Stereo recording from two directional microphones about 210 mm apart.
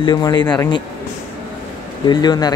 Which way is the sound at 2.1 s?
20° left (ahead or behind).